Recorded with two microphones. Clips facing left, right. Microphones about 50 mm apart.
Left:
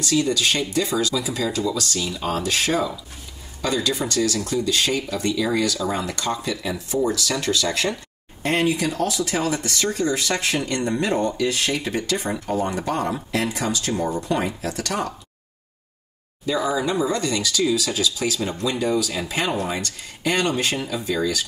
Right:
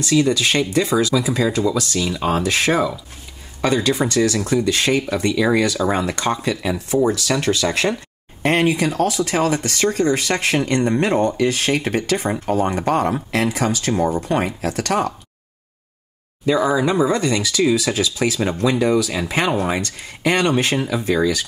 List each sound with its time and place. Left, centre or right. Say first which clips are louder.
0.0 s speech: right 4 dB; right
16.5 s speech: right 4 dB; right
16.8 s speech: right 5 dB; right
19.0 s speech: right 4 dB; right